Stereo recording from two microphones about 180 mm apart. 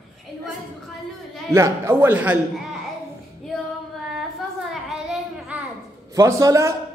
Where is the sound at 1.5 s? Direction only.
15° right (ahead or behind).